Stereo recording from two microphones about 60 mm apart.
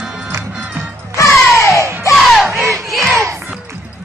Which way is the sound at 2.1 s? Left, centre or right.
Centre.